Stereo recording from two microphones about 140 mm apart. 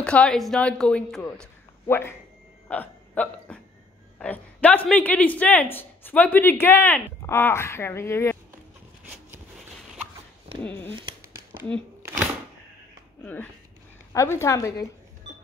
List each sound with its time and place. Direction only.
0.0 s a man's voice: 5° left (ahead or behind)
10.6 s speech: 10° left (ahead or behind)
13.2 s a woman's voice: 10° left (ahead or behind)